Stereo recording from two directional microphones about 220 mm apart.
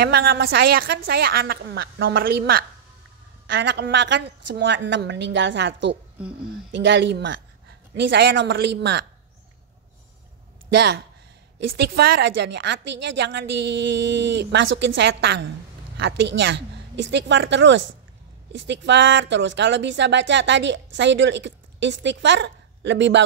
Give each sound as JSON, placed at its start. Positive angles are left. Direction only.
{"t": 0.0, "sound": "a woman's voice", "side_deg": -45}
{"t": 10.7, "sound": "a woman's voice", "side_deg": -50}